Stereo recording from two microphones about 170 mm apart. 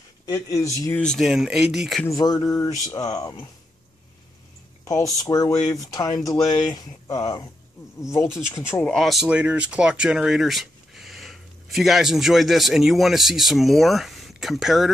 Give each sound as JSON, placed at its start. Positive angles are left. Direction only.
{"t": 0.3, "sound": "speech", "side_deg": 20}
{"t": 0.8, "sound": "speech", "side_deg": 5}
{"t": 2.0, "sound": "speech", "side_deg": 20}
{"t": 5.2, "sound": "speech", "side_deg": 20}